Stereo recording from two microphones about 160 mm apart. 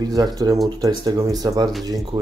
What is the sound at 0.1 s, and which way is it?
Speech, 25° right (ahead or behind).